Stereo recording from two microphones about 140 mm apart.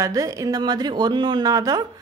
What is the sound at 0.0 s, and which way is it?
A woman's voice, 25° right (ahead or behind).